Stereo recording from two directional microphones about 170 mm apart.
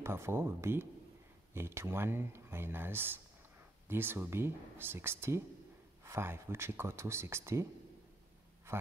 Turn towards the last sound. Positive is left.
turn(degrees=-15)  # may be behind; listen again after turning